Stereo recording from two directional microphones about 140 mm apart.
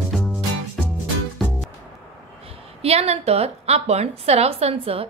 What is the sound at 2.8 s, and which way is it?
A woman's voice, 45° right (ahead or behind).